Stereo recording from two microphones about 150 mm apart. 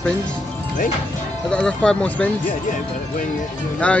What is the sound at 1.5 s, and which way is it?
Speech, 5° left (ahead or behind).